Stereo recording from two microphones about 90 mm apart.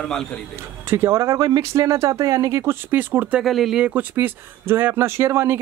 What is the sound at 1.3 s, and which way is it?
Speech, 45° right (ahead or behind).